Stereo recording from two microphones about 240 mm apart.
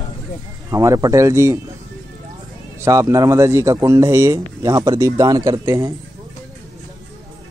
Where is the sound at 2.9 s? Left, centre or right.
Centre.